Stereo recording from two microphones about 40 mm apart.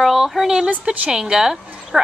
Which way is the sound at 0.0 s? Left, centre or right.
Centre.